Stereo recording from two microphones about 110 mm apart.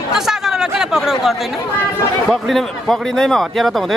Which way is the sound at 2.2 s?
Centre (ahead or behind).